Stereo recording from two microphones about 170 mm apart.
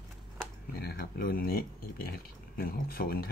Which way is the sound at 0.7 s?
65° left (ahead or behind).